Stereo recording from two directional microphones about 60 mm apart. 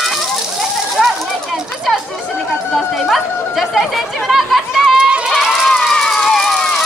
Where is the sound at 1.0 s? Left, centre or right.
Centre.